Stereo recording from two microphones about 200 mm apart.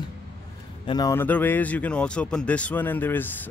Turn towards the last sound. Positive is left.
turn(degrees=10)  # may be behind; listen again after turning